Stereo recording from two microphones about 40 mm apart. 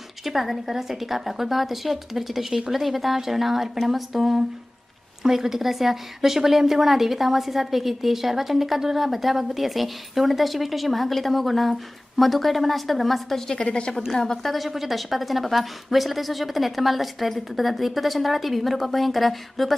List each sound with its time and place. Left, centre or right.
0.2 s a woman's voice: centre
13.5 s a woman's voice: left
14.1 s a woman's voice: centre